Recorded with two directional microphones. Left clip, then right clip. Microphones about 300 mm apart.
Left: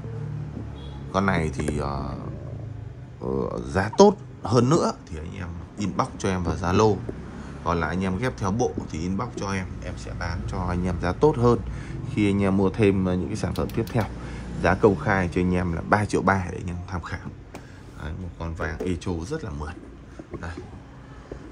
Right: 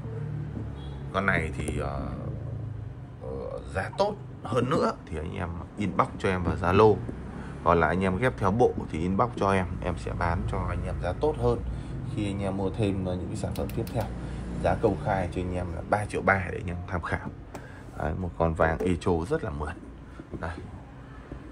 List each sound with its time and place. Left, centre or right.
1.1 s speech: centre
3.5 s speech: left
5.1 s speech: centre
10.7 s speech: left; by 19.7 s centre